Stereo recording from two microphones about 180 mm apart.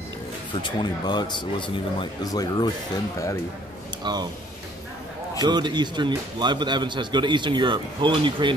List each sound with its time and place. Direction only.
0.6 s speech: 25° left (ahead or behind)
4.0 s speech: 25° right (ahead or behind)
5.4 s speech: 25° right (ahead or behind)